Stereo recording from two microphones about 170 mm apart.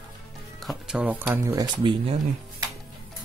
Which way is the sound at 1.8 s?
35° right (ahead or behind).